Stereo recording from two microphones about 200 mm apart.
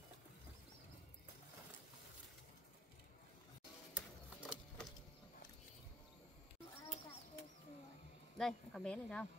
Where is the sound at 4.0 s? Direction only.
5° right (ahead or behind).